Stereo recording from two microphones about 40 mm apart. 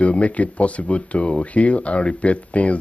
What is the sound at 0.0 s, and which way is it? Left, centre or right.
Speech, left.